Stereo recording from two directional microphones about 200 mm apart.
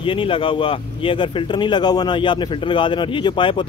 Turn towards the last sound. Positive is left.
turn(degrees=25)  # may be behind; listen again after turning